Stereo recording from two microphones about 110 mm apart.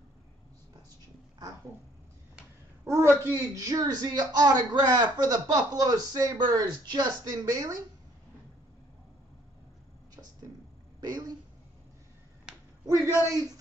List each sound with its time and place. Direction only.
2.9 s speech: 25° right (ahead or behind)
11.0 s a sound: 40° right (ahead or behind)
12.5 s finger snapping: 5° right (ahead or behind)
12.8 s a man's voice: 30° right (ahead or behind)